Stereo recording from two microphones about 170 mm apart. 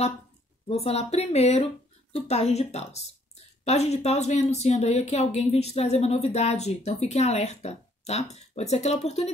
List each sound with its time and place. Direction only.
0.7 s speech: 35° left (ahead or behind)